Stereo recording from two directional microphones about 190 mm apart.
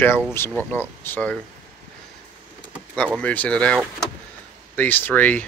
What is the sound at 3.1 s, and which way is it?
Speech, 10° left (ahead or behind).